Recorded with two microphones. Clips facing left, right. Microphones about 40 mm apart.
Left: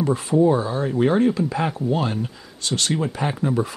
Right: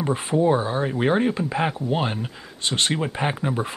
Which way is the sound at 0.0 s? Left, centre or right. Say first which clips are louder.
Left 3 dB; right.